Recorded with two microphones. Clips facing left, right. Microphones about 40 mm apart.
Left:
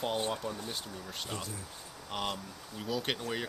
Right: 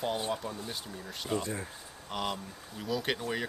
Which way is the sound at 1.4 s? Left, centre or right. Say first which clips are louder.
Right 6 dB; right.